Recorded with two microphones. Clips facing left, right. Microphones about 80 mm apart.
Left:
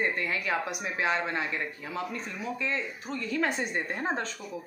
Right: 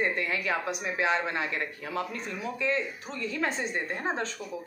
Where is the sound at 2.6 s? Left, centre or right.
Left.